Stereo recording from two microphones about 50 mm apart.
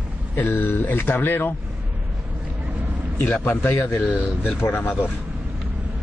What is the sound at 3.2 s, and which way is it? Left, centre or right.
Speech, left.